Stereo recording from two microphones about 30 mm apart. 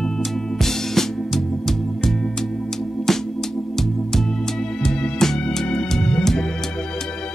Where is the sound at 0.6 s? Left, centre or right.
Centre.